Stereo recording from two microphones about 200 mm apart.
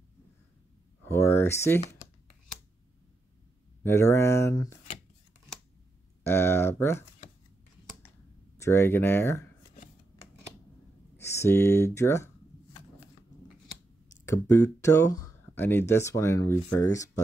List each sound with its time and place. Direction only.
1.0 s speech: 10° left (ahead or behind)
3.8 s speech: 15° left (ahead or behind)
6.2 s speech: 10° left (ahead or behind)
8.5 s speech: 15° left (ahead or behind)
11.1 s speech: 15° left (ahead or behind)
14.2 s speech: 15° left (ahead or behind)